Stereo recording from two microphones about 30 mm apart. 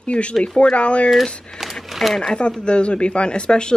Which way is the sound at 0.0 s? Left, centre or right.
Left.